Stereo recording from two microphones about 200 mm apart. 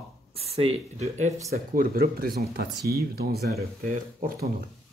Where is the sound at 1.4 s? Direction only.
45° right (ahead or behind).